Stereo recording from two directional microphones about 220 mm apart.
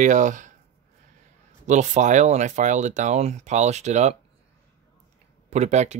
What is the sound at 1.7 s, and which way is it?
Speech, 35° right (ahead or behind).